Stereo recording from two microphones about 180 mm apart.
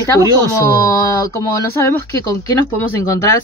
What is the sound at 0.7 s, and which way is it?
Speech, 15° left (ahead or behind).